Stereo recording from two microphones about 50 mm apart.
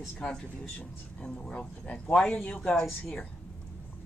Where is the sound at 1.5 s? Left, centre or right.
Left.